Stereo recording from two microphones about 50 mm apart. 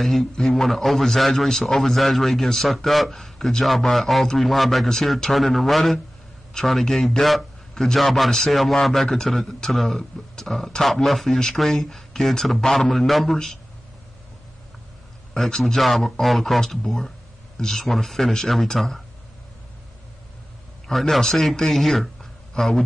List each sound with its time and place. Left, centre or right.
0.2 s a man's voice: centre
15.3 s a man's voice: centre
20.8 s speech: centre